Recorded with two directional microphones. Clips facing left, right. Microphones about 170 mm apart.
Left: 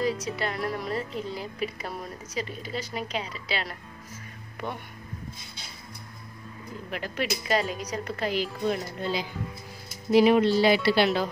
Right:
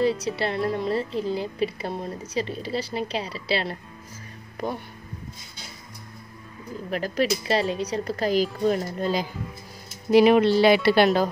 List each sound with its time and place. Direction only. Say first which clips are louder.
0.4 s a woman's voice: right 5 dB; 30° right (ahead or behind)
6.9 s a woman's voice: right 7 dB; 40° right (ahead or behind)
10.1 s speech: right 3 dB; 70° right (ahead or behind)